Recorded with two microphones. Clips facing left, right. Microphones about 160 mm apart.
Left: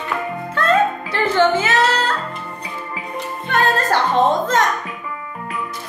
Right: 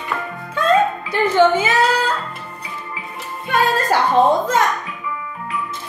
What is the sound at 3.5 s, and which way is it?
Speech, 10° right (ahead or behind).